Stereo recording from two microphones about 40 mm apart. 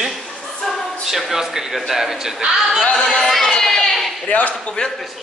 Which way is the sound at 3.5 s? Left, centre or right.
Centre.